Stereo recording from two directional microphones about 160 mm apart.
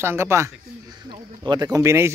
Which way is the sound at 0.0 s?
15° right (ahead or behind).